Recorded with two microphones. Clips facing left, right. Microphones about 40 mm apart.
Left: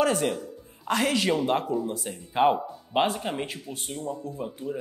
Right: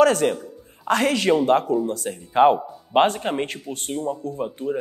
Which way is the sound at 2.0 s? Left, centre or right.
Centre.